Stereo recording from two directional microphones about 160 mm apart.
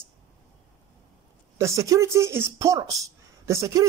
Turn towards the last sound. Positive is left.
turn(degrees=-20)  # may be behind; listen again after turning